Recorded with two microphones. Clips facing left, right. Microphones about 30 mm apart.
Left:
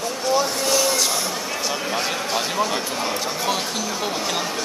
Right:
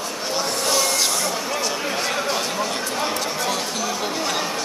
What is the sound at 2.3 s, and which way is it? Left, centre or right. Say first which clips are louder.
Speech: left 2 dB; centre.